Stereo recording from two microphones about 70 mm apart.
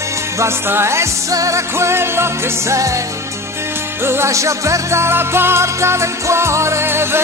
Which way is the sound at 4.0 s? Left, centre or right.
Right.